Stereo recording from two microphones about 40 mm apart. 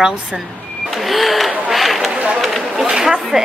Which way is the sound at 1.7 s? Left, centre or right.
Centre.